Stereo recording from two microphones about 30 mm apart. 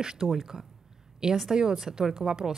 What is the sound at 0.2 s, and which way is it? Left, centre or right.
A woman's voice, centre.